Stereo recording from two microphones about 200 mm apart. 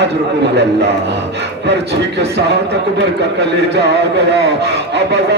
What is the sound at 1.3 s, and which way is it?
Speech, 60° right (ahead or behind).